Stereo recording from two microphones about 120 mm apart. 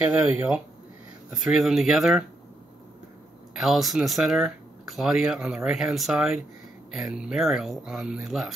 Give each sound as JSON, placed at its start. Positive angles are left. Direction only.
{"t": 0.1, "sound": "speech", "side_deg": -15}
{"t": 1.3, "sound": "speech", "side_deg": -5}
{"t": 3.5, "sound": "speech", "side_deg": -5}